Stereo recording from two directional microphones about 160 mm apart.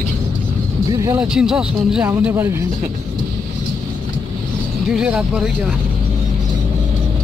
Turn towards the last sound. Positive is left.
turn(degrees=-5)  # may be behind; listen again after turning